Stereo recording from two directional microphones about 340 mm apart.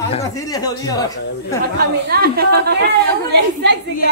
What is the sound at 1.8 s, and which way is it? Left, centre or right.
A woman's voice, right.